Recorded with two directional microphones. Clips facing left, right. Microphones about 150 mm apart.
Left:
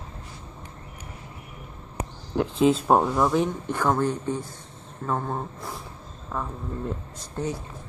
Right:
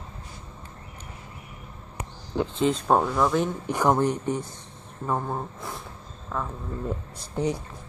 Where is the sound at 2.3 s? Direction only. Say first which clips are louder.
Left 3 dB; 5° left (ahead or behind).